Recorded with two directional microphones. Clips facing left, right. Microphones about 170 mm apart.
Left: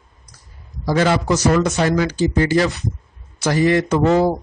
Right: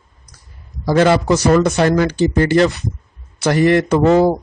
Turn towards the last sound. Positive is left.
turn(degrees=-60)  # may be behind; listen again after turning